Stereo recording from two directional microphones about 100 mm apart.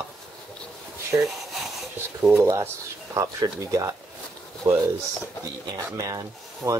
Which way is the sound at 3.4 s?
40° right (ahead or behind).